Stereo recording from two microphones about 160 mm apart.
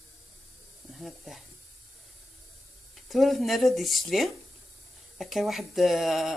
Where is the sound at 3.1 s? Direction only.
Centre (ahead or behind).